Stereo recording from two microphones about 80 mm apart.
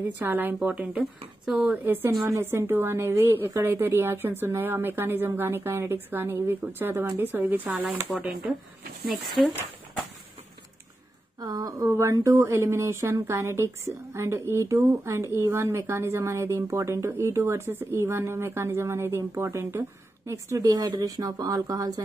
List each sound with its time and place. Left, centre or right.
0.0 s a woman's voice: right
1.4 s speech: centre
1.9 s a woman's voice: right
9.1 s speech: centre
11.3 s speech: right